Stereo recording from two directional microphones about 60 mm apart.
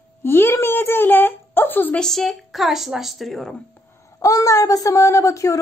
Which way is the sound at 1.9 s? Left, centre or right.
Centre.